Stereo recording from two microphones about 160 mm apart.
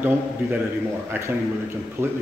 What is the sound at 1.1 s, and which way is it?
Speech, 15° right (ahead or behind).